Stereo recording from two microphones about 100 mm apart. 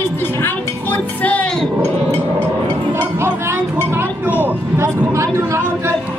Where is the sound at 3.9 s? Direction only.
15° right (ahead or behind).